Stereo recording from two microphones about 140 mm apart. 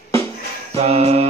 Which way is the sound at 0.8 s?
50° right (ahead or behind).